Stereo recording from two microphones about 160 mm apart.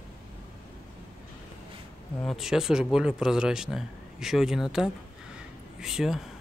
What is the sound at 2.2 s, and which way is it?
Speech, centre (ahead or behind).